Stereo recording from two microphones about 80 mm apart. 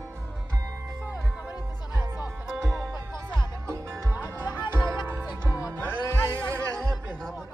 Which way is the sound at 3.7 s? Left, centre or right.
Right.